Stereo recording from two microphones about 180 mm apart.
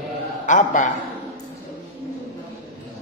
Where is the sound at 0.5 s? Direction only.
45° left (ahead or behind).